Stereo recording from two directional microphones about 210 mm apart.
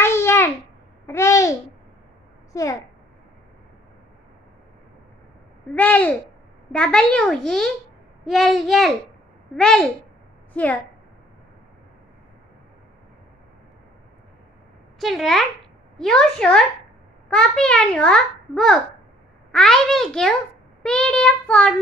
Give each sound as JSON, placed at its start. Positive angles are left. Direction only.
{"t": 0.0, "sound": "babbling", "side_deg": 10}
{"t": 2.5, "sound": "a child's voice", "side_deg": 15}
{"t": 5.8, "sound": "babbling", "side_deg": 5}
{"t": 6.7, "sound": "a child's voice", "side_deg": 5}
{"t": 15.0, "sound": "a child's voice", "side_deg": 0}